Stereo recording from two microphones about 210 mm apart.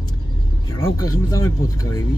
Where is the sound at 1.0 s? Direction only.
15° left (ahead or behind).